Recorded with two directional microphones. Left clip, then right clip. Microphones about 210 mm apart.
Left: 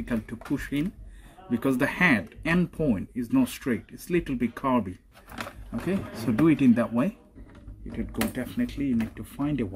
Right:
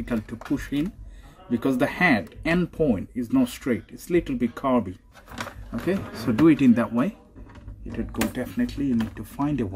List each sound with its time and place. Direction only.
0.0 s speech: 10° left (ahead or behind)
8.2 s speech: 5° left (ahead or behind)